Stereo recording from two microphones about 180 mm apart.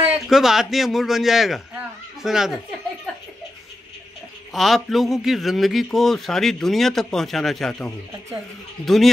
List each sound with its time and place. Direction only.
0.0 s a man's voice: centre (ahead or behind)
4.6 s a man's voice: centre (ahead or behind)